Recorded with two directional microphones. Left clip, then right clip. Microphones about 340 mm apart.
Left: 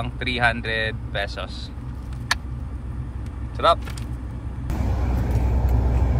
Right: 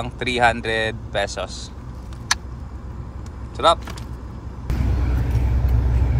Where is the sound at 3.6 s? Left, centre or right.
Centre.